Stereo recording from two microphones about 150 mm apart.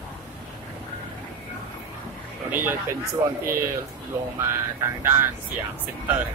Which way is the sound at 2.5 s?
10° right (ahead or behind).